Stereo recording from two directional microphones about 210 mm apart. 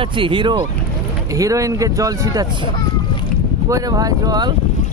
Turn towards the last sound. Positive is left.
turn(degrees=-20)  # may be behind; listen again after turning